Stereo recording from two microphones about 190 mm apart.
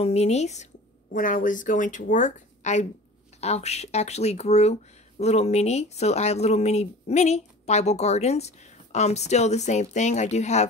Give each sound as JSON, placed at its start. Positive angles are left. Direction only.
{"t": 0.0, "sound": "speech", "side_deg": 35}